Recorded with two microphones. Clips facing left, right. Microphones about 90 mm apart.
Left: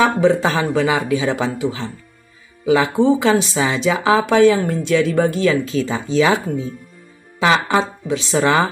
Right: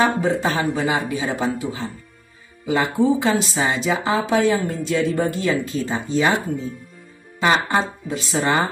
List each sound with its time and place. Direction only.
0.0 s speech: 90° left
7.3 s speech: 90° left